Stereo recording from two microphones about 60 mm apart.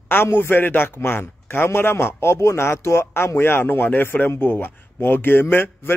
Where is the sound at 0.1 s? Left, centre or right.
Left.